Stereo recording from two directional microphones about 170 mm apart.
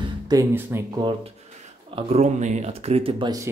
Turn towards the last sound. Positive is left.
turn(degrees=-25)  # may be behind; listen again after turning